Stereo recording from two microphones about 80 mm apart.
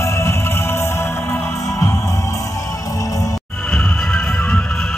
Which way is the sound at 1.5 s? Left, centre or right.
Left.